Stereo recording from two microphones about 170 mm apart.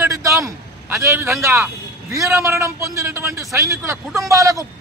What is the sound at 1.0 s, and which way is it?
A man's voice, 15° right (ahead or behind).